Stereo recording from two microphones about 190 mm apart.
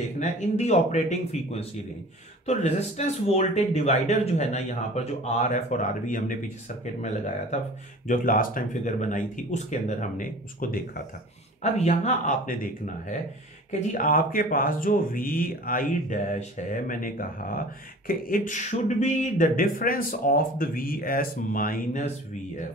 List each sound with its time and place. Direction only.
0.2 s speech: 35° left (ahead or behind)
8.1 s speech: 45° left (ahead or behind)